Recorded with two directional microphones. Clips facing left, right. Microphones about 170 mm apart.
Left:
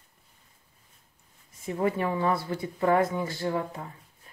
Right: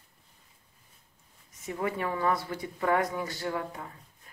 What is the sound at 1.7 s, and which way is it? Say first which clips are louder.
A woman's voice: left 4 dB; 30° left (ahead or behind).